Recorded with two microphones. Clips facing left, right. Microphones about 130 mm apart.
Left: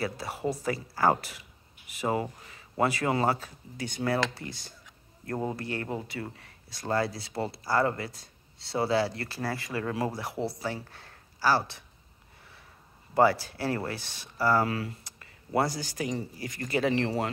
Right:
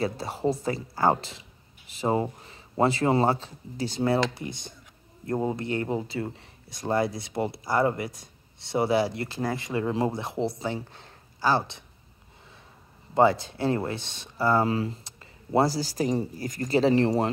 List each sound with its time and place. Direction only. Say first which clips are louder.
0.0 s speech: right 4 dB; 25° right (ahead or behind)
13.1 s speech: right 2 dB; 20° right (ahead or behind)